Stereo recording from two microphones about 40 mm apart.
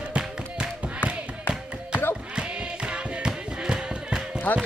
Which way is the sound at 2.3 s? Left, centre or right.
Right.